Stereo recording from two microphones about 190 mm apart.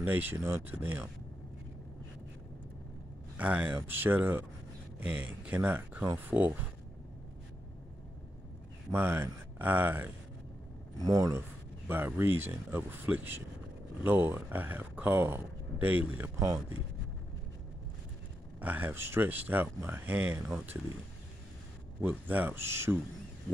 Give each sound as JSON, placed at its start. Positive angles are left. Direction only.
{"t": 0.0, "sound": "speech", "side_deg": -10}
{"t": 3.3, "sound": "speech", "side_deg": -10}
{"t": 8.9, "sound": "speech", "side_deg": -10}
{"t": 18.6, "sound": "speech", "side_deg": -10}
{"t": 22.0, "sound": "speech", "side_deg": -10}